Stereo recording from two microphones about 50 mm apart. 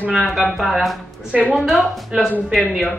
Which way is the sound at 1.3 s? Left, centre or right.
Right.